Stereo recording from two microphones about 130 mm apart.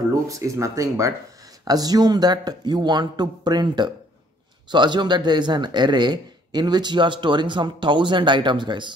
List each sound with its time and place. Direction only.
0.3 s speech: 25° right (ahead or behind)